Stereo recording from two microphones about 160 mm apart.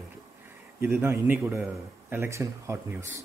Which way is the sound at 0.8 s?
15° right (ahead or behind).